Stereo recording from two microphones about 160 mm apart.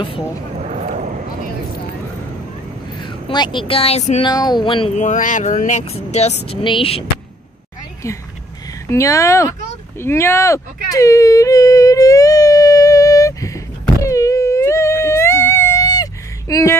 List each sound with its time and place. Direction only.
3.0 s speech: 30° left (ahead or behind)
4.3 s speech: 25° left (ahead or behind)
4.9 s speech: 50° left (ahead or behind); by 7.1 s 35° left (ahead or behind)
8.8 s speech: 20° left (ahead or behind)
14.0 s a sound: 20° left (ahead or behind)